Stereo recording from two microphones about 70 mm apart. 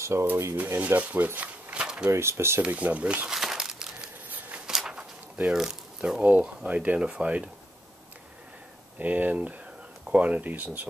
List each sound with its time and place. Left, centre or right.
0.0 s speech: right
0.7 s speech: right; by 2.0 s centre
2.0 s speech: right
2.6 s speech: centre
3.3 s crumpling: centre
4.6 s speech: centre
8.9 s speech: right